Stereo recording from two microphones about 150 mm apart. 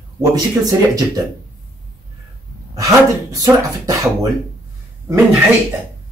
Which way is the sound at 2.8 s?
20° right (ahead or behind).